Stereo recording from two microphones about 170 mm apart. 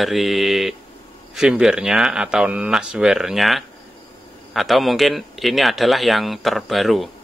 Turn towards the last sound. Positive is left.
turn(degrees=0)  # may be behind; listen again after turning